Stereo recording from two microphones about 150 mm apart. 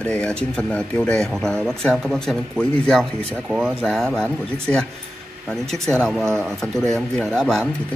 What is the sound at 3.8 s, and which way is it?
Speech, 5° left (ahead or behind).